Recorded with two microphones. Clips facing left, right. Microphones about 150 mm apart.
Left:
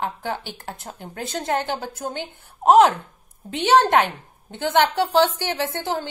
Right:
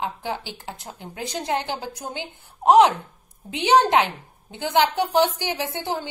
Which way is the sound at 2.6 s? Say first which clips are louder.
Left 1 dB; 5° left (ahead or behind).